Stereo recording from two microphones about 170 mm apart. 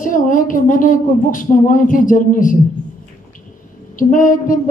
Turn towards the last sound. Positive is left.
turn(degrees=50)  # may be behind; listen again after turning